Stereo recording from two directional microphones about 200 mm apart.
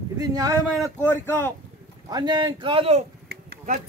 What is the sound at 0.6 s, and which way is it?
Speech, centre (ahead or behind).